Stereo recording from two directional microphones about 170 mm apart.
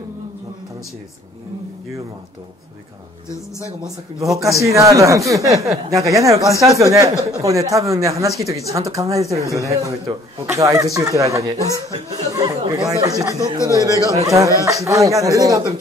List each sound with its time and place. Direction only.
4.4 s speech: 20° right (ahead or behind)